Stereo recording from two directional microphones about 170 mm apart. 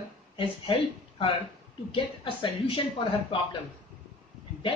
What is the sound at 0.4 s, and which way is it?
A woman's voice, 30° left (ahead or behind).